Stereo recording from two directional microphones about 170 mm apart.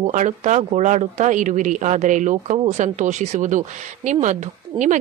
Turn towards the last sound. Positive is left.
turn(degrees=-45)  # may be behind; listen again after turning